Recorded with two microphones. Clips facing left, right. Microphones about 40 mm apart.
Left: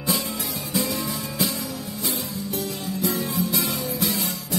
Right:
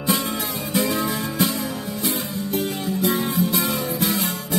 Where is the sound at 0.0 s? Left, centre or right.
Right.